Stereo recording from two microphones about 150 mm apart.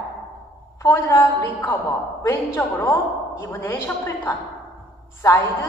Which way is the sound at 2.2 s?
15° left (ahead or behind).